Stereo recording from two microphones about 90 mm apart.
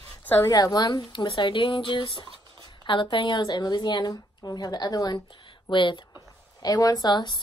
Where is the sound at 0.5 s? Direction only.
45° left (ahead or behind).